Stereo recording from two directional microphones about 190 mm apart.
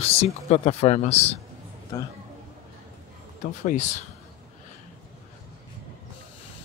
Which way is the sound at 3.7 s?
35° left (ahead or behind).